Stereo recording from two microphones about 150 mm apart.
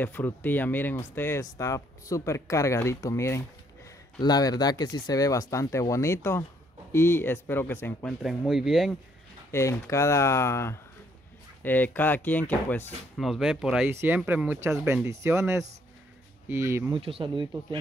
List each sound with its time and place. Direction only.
0.0 s speech: 10° left (ahead or behind)
8.2 s speech: centre (ahead or behind)
9.5 s speech: 20° left (ahead or behind)
13.2 s speech: centre (ahead or behind); by 16.9 s 15° right (ahead or behind)
16.9 s speech: 35° right (ahead or behind)